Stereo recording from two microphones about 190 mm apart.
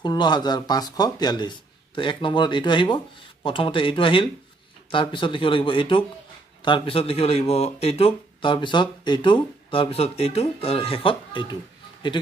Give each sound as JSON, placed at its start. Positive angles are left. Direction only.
{"t": 0.0, "sound": "speech", "side_deg": 20}